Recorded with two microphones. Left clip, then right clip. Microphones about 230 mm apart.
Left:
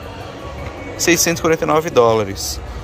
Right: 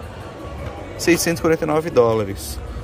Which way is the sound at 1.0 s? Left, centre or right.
Centre.